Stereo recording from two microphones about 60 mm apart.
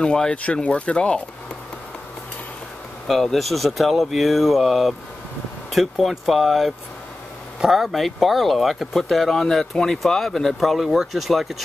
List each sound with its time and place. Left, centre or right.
0.0 s speech: centre
3.1 s speech: centre